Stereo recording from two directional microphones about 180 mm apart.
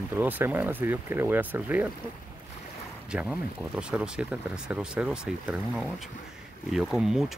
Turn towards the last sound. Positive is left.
turn(degrees=-5)  # may be behind; listen again after turning